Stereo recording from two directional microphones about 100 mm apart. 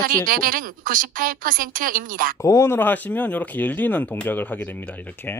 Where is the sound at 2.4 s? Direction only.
30° left (ahead or behind).